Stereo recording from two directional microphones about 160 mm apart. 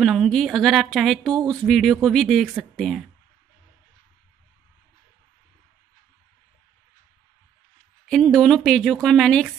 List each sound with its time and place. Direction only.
0.0 s speech: centre (ahead or behind)
8.1 s speech: 5° left (ahead or behind)